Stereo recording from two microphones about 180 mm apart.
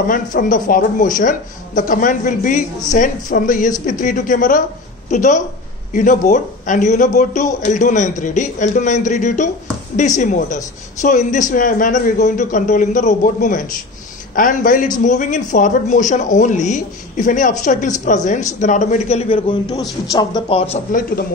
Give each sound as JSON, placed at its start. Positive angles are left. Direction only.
{"t": 0.1, "sound": "a man's voice", "side_deg": 50}